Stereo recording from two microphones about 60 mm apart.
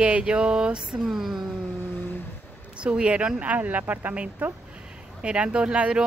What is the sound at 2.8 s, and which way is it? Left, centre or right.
Speech, centre.